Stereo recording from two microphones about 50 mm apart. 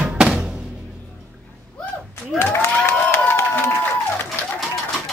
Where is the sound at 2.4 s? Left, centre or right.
Left.